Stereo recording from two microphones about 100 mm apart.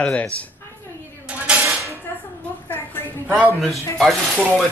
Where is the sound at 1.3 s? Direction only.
15° right (ahead or behind).